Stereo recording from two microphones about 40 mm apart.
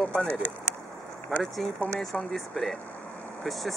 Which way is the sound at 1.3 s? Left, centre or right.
Centre.